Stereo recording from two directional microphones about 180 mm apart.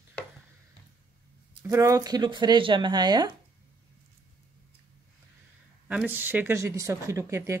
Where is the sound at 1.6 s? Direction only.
15° right (ahead or behind).